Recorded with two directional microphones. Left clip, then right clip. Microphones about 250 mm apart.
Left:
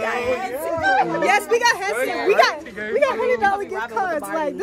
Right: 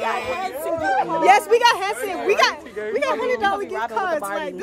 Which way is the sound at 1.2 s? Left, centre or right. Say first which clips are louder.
Right 3 dB; centre.